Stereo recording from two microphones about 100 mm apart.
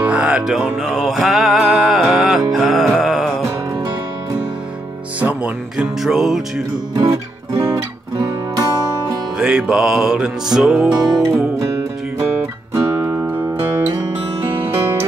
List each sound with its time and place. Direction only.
0.0 s music: 10° right (ahead or behind)
5.2 s speech: 10° right (ahead or behind)
7.0 s music: 30° right (ahead or behind)
9.4 s music: 10° right (ahead or behind)
13.2 s music: 15° right (ahead or behind)